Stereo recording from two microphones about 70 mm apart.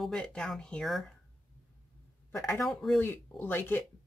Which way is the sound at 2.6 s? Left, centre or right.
Centre.